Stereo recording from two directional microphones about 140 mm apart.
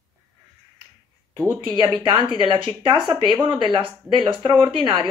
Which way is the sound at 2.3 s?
35° right (ahead or behind).